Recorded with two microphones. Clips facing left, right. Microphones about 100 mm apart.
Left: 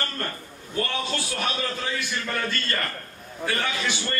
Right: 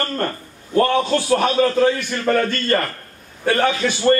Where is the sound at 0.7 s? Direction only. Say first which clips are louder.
Right 12 dB; 50° right (ahead or behind).